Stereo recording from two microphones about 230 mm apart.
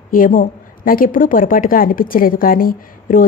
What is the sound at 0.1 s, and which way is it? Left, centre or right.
A woman's voice, left.